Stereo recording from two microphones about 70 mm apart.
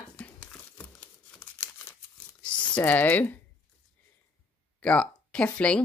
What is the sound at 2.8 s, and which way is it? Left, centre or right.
Speech, left.